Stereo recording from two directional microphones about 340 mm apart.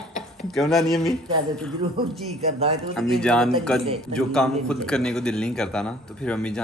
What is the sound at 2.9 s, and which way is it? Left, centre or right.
Speech, centre.